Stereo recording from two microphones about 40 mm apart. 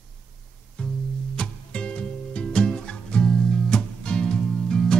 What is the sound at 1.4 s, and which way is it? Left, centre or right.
Music, left.